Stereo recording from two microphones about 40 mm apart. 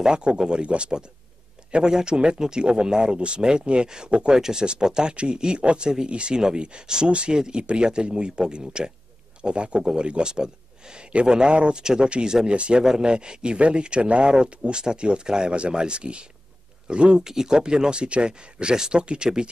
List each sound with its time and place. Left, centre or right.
0.0 s speech: right
12.8 s speech: centre
17.2 s speech: centre